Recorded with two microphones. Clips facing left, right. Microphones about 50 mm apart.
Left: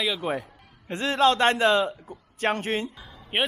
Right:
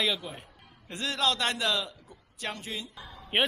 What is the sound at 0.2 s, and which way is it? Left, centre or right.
A man's voice, left.